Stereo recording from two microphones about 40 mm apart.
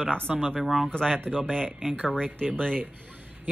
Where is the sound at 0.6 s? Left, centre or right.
Centre.